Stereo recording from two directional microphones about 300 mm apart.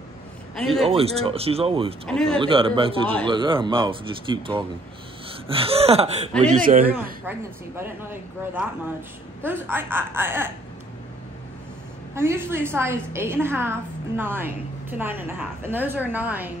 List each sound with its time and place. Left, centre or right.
0.8 s speech: centre
2.0 s a man's voice: centre
2.3 s a woman's voice: centre
7.2 s a woman's voice: centre
12.2 s a woman's voice: centre